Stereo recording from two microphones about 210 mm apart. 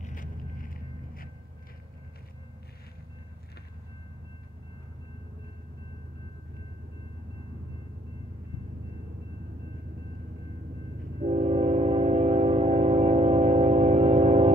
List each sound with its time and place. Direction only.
0.0 s vehicle: 40° left (ahead or behind)
11.2 s train: 30° right (ahead or behind)